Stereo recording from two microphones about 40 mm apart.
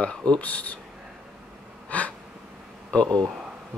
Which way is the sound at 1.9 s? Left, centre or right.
Left.